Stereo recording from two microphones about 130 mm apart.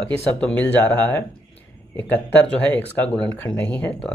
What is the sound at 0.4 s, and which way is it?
Speech, 10° left (ahead or behind).